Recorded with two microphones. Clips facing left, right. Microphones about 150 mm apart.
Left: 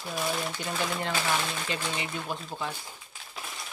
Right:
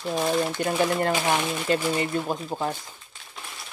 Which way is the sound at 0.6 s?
50° right (ahead or behind).